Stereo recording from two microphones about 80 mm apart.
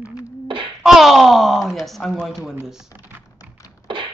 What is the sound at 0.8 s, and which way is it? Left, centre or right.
Speech, centre.